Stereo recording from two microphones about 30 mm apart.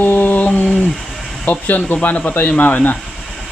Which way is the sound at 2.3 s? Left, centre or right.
Left.